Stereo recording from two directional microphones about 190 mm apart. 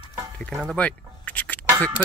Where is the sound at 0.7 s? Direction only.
10° left (ahead or behind).